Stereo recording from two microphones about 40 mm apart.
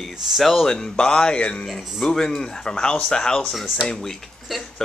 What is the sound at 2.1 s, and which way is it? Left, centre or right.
Speech, centre.